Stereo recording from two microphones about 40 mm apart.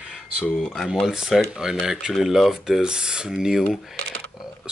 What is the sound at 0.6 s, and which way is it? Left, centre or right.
Speech, centre.